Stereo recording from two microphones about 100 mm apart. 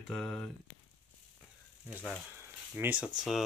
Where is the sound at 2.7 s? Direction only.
15° right (ahead or behind).